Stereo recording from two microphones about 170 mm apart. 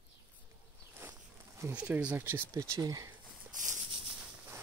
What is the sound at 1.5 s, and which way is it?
Speech, 10° right (ahead or behind).